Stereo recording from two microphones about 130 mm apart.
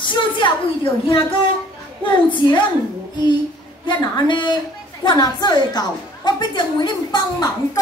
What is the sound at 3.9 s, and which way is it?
A woman's voice, 35° left (ahead or behind).